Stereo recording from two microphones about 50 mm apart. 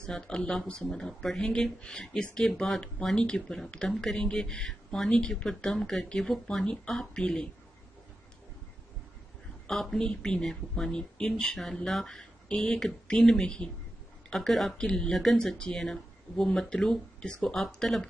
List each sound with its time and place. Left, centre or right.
0.0 s speech: centre
9.7 s speech: centre
12.7 s speech: centre